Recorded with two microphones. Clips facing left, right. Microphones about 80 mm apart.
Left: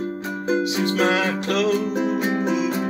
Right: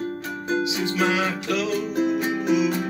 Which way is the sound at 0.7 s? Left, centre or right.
Left.